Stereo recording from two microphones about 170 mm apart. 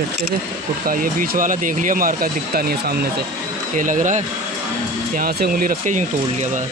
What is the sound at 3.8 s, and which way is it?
Speech, 50° right (ahead or behind).